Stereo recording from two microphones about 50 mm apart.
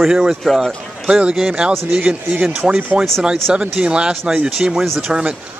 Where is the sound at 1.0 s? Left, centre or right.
Right.